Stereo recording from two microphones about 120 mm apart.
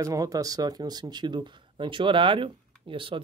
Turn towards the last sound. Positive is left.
turn(degrees=-45)  # may be behind; listen again after turning